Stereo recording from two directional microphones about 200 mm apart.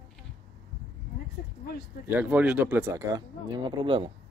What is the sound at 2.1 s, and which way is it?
Speech, 10° right (ahead or behind).